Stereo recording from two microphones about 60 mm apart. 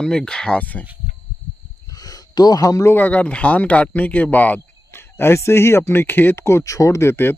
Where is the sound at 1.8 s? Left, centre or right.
Left.